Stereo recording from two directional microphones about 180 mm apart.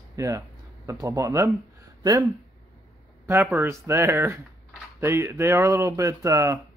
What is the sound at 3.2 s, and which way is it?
Speech, 10° right (ahead or behind).